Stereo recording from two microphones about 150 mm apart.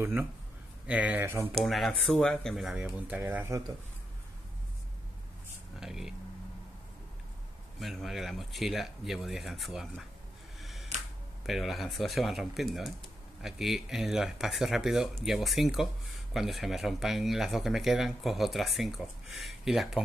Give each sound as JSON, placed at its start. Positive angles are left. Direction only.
{"t": 0.0, "sound": "speech", "side_deg": -15}
{"t": 1.5, "sound": "speech", "side_deg": 0}
{"t": 5.8, "sound": "speech", "side_deg": -5}
{"t": 7.8, "sound": "speech", "side_deg": 0}
{"t": 10.6, "sound": "camera", "side_deg": 0}
{"t": 11.4, "sound": "speech", "side_deg": 0}